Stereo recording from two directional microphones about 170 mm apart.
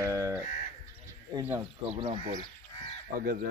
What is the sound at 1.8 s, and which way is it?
Speech, 35° right (ahead or behind).